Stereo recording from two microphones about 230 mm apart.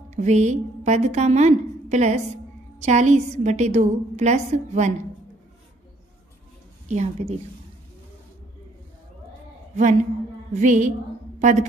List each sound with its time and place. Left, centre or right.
0.1 s a woman's voice: right
6.9 s a woman's voice: right
10.5 s a woman's voice: right